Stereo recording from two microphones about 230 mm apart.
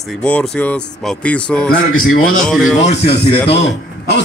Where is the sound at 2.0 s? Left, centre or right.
Left.